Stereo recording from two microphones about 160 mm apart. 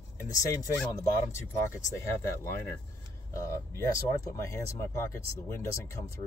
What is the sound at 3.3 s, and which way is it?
Speech, 20° left (ahead or behind).